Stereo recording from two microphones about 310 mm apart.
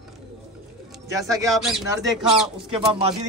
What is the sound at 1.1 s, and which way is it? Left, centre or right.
Speech, centre.